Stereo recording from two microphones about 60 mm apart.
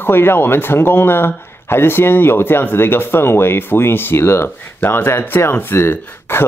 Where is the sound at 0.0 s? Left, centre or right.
Left.